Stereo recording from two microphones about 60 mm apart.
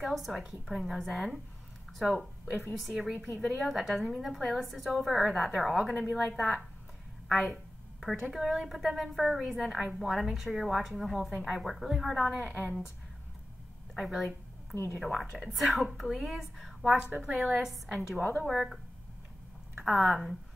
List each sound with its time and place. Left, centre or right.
0.0 s a woman's voice: centre
5.9 s a woman's voice: centre
6.1 s a woman's voice: centre
13.9 s a woman's voice: centre
16.8 s a woman's voice: centre
19.8 s a woman's voice: centre